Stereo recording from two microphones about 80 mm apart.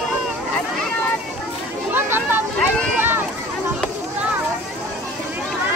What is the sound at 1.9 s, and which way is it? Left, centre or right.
Children playing, right.